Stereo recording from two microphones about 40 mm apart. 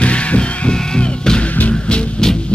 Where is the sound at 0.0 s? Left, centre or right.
Left.